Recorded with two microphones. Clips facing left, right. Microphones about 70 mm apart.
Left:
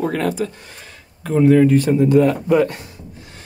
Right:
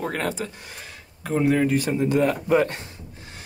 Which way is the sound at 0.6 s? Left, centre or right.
Centre.